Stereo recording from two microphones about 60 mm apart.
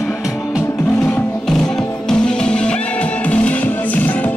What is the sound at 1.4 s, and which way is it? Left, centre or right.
Music, centre.